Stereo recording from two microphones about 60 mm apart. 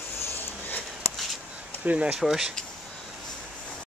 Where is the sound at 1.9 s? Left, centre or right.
Right.